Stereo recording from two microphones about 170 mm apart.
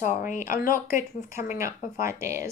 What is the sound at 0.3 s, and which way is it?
Speech, 50° left (ahead or behind).